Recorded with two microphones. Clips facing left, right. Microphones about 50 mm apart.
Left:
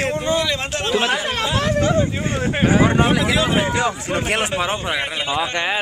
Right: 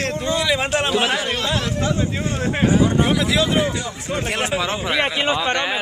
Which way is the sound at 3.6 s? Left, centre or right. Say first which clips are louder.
Left 4 dB; left.